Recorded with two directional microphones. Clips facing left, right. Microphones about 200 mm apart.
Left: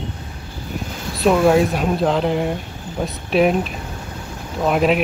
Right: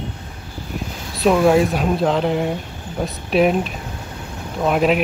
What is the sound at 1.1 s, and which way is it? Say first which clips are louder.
Speech: even; centre (ahead or behind).